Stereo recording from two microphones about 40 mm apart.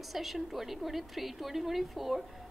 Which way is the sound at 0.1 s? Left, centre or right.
Centre.